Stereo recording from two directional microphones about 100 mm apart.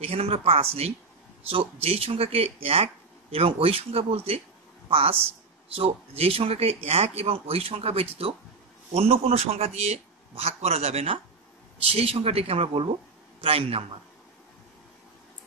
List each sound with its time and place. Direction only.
0.0 s speech: 80° right
8.9 s a man's voice: 90° right
11.8 s speech: 75° right (ahead or behind)